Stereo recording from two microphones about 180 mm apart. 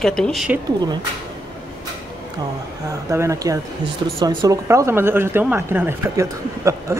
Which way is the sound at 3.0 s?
15° right (ahead or behind).